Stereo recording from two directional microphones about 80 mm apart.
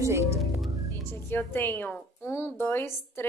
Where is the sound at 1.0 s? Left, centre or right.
Left.